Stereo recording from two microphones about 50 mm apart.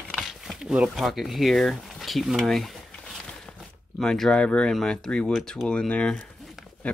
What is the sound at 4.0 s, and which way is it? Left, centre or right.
Speech, centre.